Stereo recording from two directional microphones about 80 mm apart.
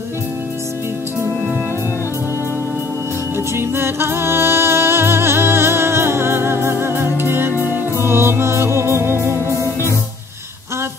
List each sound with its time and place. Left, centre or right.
3.3 s music: right
9.6 s music: left